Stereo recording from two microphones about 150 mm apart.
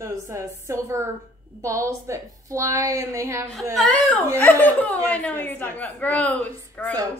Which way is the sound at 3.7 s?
10° left (ahead or behind).